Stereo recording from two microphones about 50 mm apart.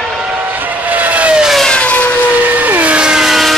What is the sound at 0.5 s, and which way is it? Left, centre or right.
Vehicle, right.